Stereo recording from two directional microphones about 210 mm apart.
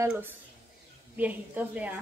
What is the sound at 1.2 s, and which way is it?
Speech, 5° right (ahead or behind).